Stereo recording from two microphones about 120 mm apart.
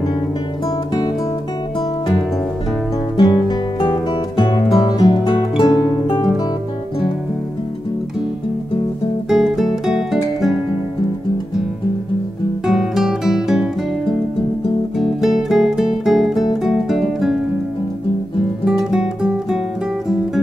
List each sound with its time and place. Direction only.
3.2 s music: 35° left (ahead or behind)
9.3 s music: 5° right (ahead or behind)
12.6 s music: 5° right (ahead or behind)
15.0 s music: centre (ahead or behind)
18.7 s music: 5° right (ahead or behind)